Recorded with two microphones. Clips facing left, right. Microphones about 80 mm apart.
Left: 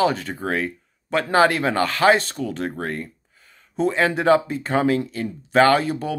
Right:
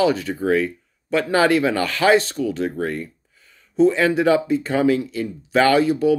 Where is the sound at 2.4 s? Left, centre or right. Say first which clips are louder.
Right 4 dB; left.